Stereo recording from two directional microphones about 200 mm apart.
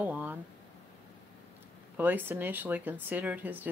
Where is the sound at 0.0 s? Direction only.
10° right (ahead or behind).